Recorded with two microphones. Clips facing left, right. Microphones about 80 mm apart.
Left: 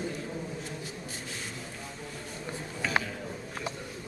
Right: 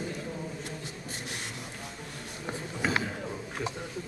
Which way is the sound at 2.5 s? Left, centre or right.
Centre.